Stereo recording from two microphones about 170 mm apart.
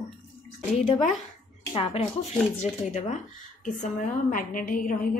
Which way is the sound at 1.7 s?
35° left (ahead or behind).